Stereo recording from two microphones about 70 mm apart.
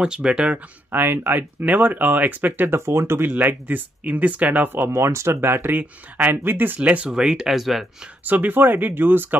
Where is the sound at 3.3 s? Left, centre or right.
Right; by 8.1 s centre.